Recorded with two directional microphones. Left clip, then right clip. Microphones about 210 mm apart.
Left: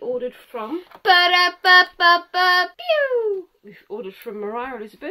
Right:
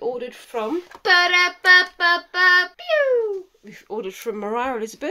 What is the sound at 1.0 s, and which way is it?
Child singing, 45° left (ahead or behind).